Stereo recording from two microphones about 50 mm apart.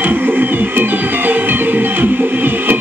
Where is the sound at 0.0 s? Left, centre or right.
Right.